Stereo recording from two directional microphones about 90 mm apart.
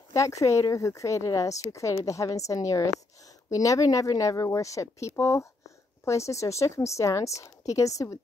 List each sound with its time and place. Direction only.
0.1 s speech: 35° left (ahead or behind)